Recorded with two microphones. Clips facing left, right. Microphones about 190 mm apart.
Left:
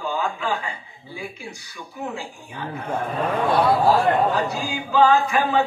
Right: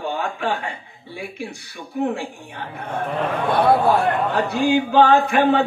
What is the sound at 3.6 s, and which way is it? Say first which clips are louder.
Speech: right 3 dB; 60° right (ahead or behind).